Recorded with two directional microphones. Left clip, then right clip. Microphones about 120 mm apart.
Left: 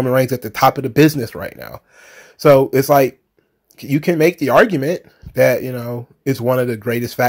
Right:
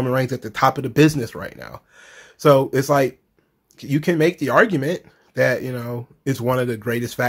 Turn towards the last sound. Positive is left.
turn(degrees=25)  # may be behind; listen again after turning